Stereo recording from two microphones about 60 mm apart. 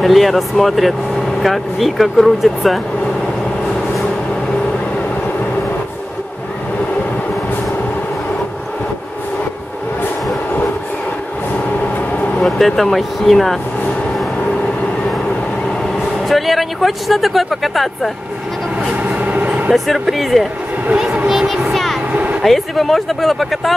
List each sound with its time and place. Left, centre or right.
0.0 s speech: centre
12.4 s speech: centre
16.3 s speech: centre
19.0 s vehicle: right
19.7 s speech: centre
20.9 s speech: centre
21.3 s a sound: centre
22.1 s vehicle: right
22.4 s speech: centre